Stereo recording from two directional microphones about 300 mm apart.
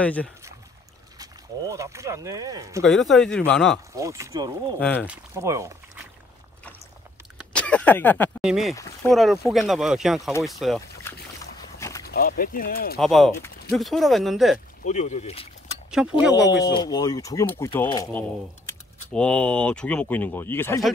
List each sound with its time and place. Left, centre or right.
0.0 s speech: centre
1.1 s speech: centre
2.8 s speech: centre
3.9 s speech: centre
4.7 s speech: centre
7.5 s speech: centre
11.8 s a sound: centre
12.1 s speech: left
12.9 s speech: centre
14.9 s speech: left
16.4 s speech: centre